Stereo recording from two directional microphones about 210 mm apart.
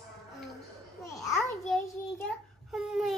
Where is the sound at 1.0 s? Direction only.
15° left (ahead or behind).